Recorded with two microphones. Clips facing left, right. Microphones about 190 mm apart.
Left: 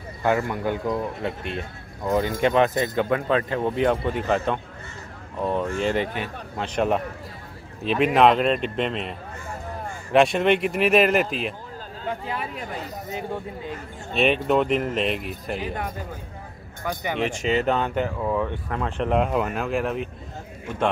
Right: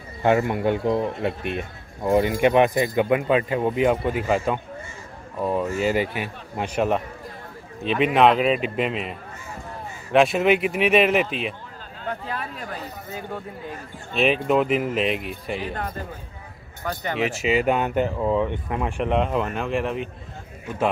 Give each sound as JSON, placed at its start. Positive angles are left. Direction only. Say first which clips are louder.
{"t": 0.2, "sound": "speech", "louder": "right 3 dB", "side_deg": -20}
{"t": 10.1, "sound": "speech", "louder": "even", "side_deg": 0}
{"t": 12.1, "sound": "speech", "louder": "left 1 dB", "side_deg": 10}
{"t": 14.1, "sound": "speech", "louder": "even", "side_deg": 0}
{"t": 16.8, "sound": "speech", "louder": "even", "side_deg": 10}
{"t": 17.2, "sound": "speech", "louder": "right 2 dB", "side_deg": -5}
{"t": 19.0, "sound": "speech", "louder": "left 1 dB", "side_deg": 0}